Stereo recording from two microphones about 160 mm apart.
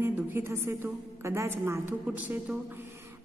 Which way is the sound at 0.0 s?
15° right (ahead or behind).